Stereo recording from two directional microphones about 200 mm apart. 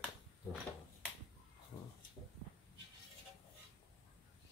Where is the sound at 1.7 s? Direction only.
20° left (ahead or behind).